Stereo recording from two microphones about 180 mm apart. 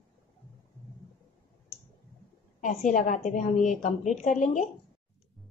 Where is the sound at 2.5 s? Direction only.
45° left (ahead or behind).